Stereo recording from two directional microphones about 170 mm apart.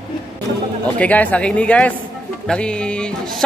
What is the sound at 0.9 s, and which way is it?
Speech, 10° left (ahead or behind).